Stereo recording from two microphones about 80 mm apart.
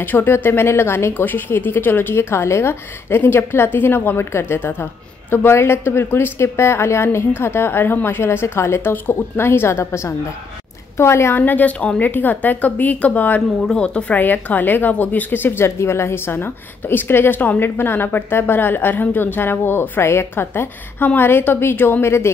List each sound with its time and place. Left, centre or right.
0.0 s a woman's voice: left